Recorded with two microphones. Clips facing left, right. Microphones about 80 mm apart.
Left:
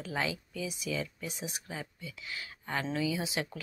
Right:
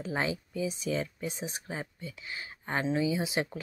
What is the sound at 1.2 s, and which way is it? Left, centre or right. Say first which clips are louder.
Speech: right 4 dB; right.